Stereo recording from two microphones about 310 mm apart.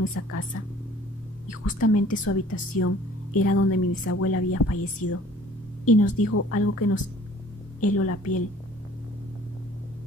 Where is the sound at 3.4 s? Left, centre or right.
Left.